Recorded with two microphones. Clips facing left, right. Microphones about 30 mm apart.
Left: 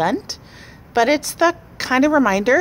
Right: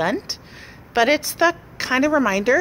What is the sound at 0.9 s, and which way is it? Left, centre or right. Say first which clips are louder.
Speech: left 1 dB; right.